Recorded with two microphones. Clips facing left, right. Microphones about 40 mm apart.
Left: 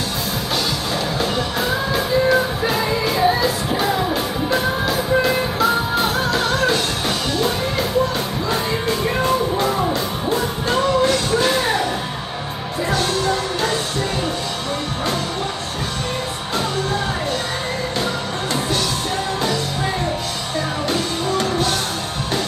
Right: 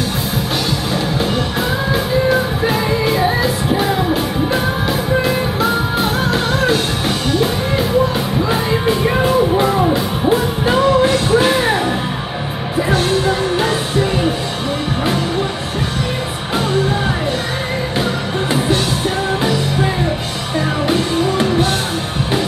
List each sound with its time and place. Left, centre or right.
1.9 s music: centre
12.9 s music: centre
20.8 s music: centre